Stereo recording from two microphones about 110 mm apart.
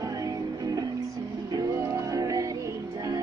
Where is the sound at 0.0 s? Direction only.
35° right (ahead or behind).